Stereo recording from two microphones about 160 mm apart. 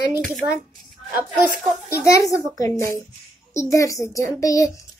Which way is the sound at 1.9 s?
20° left (ahead or behind).